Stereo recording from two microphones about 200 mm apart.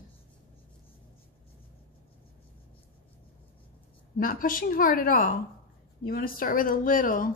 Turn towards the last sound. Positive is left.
turn(degrees=45)  # may be behind; listen again after turning